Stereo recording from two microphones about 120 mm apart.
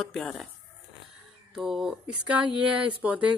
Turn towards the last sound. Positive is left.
turn(degrees=-10)  # may be behind; listen again after turning